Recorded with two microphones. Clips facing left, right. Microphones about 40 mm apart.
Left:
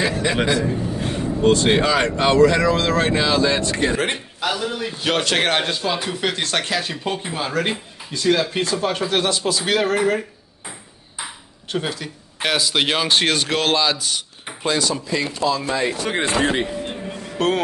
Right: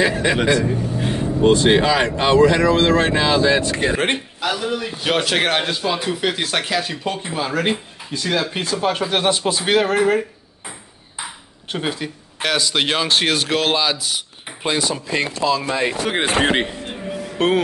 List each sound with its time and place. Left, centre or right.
0.0 s speech: right
1.0 s vehicle: centre
1.7 s speech: centre
3.9 s speech: right
4.4 s a man's voice: centre
9.3 s speech: right
9.8 s speech: centre
11.7 s speech: centre
12.4 s speech: centre
14.6 s speech: right
15.0 s speech: right
16.8 s music: centre